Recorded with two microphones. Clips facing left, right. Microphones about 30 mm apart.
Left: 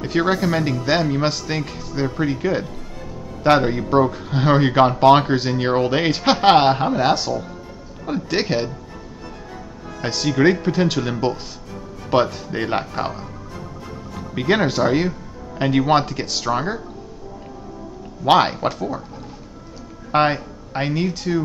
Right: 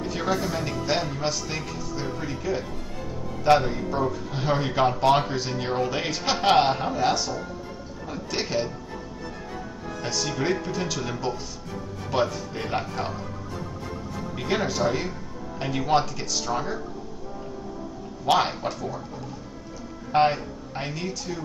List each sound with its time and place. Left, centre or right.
0.0 s speech: left
10.0 s speech: left
14.5 s speech: left
18.2 s speech: left
20.1 s speech: left